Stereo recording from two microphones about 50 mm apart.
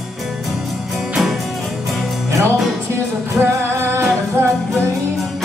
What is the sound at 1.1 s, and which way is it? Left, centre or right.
Music, centre.